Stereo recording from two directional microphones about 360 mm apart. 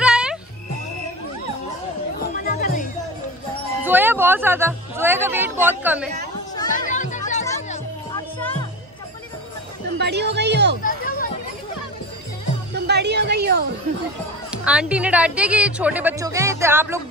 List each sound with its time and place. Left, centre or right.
0.0 s music: centre
2.3 s music: left
3.8 s music: centre
6.7 s music: left
8.4 s music: centre
9.9 s music: right
10.8 s a sound: left
12.7 s a sound: right
14.5 s speech: centre